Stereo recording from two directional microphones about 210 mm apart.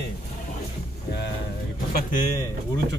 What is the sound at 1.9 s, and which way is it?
Speech, 40° left (ahead or behind).